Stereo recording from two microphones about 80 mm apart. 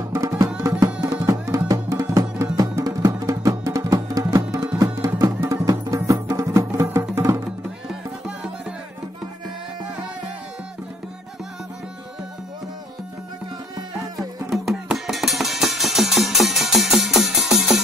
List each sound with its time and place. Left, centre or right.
0.1 s music: right
7.9 s music: centre
14.5 s music: centre